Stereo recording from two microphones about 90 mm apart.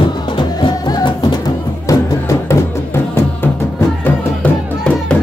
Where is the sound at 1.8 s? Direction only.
40° left (ahead or behind).